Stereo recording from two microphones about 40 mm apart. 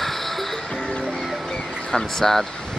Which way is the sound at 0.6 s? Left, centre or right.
Left.